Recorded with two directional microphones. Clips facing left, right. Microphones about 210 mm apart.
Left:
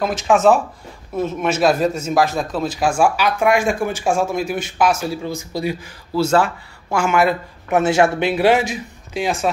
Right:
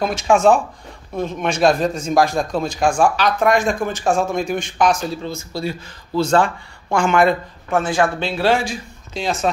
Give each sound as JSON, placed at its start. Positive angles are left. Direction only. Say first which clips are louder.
{"t": 0.0, "sound": "a man's voice", "louder": "even", "side_deg": 0}
{"t": 7.7, "sound": "a man's voice", "louder": "left 3 dB", "side_deg": 25}